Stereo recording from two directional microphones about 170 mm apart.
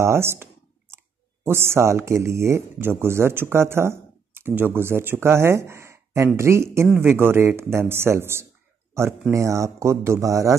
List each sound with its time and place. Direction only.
0.0 s speech: 15° right (ahead or behind)